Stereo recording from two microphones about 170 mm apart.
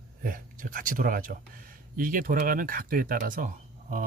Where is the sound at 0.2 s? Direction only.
55° right (ahead or behind).